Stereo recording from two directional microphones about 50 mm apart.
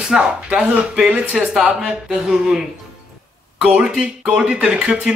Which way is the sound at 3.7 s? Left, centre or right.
Right.